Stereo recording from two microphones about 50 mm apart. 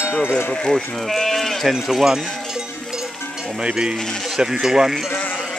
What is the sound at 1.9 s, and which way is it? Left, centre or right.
Speech, centre.